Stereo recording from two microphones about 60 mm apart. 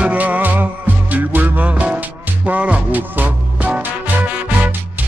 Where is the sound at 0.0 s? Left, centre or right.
Right.